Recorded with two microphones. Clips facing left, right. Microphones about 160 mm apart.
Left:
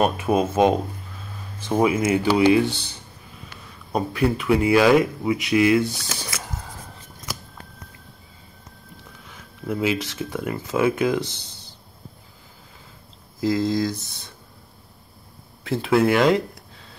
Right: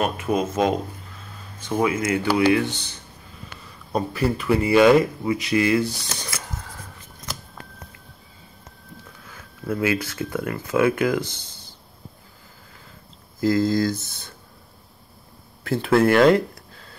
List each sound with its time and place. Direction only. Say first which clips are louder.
0.0 s speech: left 3 dB; 25° left (ahead or behind)
3.9 s speech: left 1 dB; centre (ahead or behind)
9.7 s speech: even; 20° left (ahead or behind)
11.3 s a sound: left 1 dB; 20° right (ahead or behind)
13.4 s speech: right 2 dB; centre (ahead or behind)
15.9 s speech: right 2 dB; centre (ahead or behind)